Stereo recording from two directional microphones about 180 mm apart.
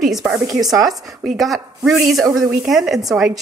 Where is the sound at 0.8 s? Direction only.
Centre (ahead or behind).